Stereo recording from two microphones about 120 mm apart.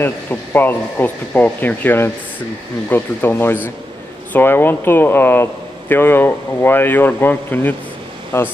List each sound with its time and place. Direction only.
0.0 s speech: 15° left (ahead or behind)